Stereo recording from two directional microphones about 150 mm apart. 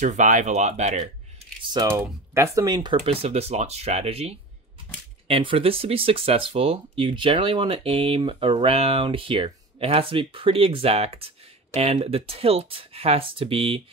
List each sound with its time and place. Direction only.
0.0 s speech: 55° right (ahead or behind)
1.7 s speech: 20° right (ahead or behind); by 13.8 s 40° right (ahead or behind)